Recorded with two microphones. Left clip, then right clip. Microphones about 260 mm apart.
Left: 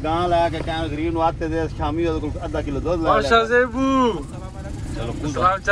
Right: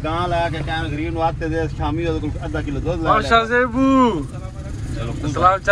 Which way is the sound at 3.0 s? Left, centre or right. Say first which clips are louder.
Right 1 dB; centre.